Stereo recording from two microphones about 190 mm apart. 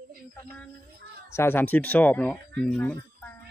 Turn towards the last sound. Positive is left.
turn(degrees=10)  # may be behind; listen again after turning